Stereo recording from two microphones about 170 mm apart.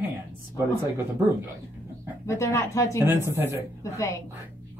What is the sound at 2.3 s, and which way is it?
Speech, 15° left (ahead or behind).